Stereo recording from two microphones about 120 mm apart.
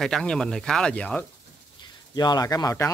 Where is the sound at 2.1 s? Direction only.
35° left (ahead or behind).